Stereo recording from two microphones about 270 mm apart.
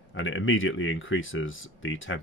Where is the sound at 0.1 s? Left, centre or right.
Left.